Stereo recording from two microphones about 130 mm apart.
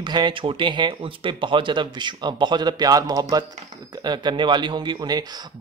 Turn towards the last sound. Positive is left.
turn(degrees=-30)  # may be behind; listen again after turning